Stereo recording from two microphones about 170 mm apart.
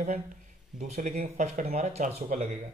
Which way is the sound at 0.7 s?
45° right (ahead or behind).